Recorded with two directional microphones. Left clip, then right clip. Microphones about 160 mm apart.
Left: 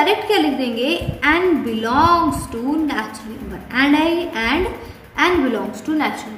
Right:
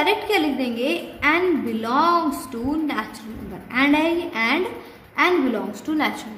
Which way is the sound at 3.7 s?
35° right (ahead or behind).